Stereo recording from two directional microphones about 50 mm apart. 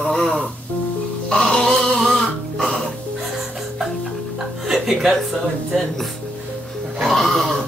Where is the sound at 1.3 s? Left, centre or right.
Centre.